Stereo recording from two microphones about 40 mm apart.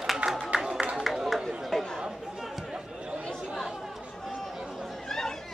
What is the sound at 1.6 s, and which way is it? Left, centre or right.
Chatter, centre.